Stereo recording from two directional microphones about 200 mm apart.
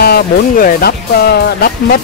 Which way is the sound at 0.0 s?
50° left (ahead or behind).